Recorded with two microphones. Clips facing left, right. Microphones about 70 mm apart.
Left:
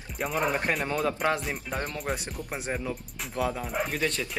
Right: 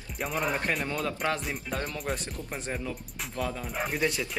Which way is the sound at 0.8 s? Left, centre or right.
Centre.